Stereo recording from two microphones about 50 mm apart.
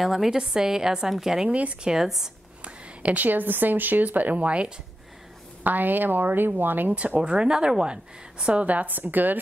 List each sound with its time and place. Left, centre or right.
0.0 s a woman's voice: centre
1.5 s speech: right
1.9 s a woman's voice: centre
2.6 s a sound: right
3.3 s speech: right
5.6 s speech: right
7.2 s a woman's voice: centre
8.6 s speech: right